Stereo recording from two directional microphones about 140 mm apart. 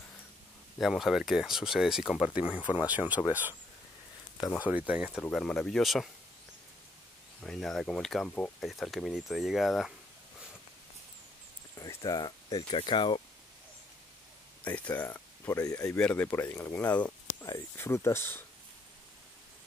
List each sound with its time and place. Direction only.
0.7 s speech: centre (ahead or behind)
2.6 s speech: 30° left (ahead or behind)
4.4 s speech: 25° left (ahead or behind)
4.6 s speech: 10° right (ahead or behind)
5.2 s speech: 5° left (ahead or behind)
7.4 s speech: centre (ahead or behind)
11.7 s speech: 25° left (ahead or behind)
14.6 s speech: 10° left (ahead or behind)
16.0 s speech: 10° left (ahead or behind)